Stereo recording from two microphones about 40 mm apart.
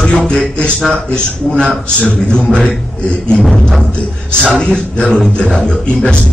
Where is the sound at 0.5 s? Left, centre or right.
Left.